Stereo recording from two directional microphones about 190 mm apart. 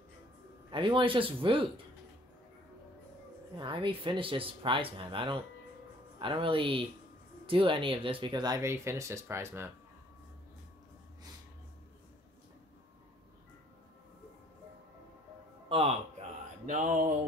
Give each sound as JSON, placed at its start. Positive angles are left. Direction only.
{"t": 0.7, "sound": "speech", "side_deg": -25}
{"t": 3.5, "sound": "speech", "side_deg": -25}
{"t": 15.7, "sound": "a man's voice", "side_deg": -30}
{"t": 16.6, "sound": "a sound", "side_deg": -40}